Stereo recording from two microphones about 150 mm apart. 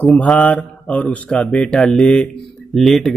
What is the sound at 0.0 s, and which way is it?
Speech, centre (ahead or behind).